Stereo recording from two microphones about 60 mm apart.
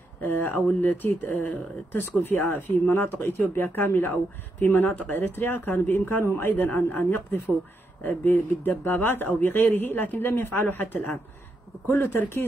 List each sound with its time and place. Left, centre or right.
0.2 s speech: left